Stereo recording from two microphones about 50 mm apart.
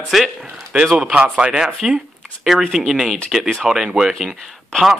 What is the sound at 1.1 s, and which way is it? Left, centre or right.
Sanding, right.